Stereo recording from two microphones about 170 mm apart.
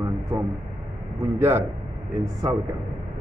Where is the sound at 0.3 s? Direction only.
30° right (ahead or behind).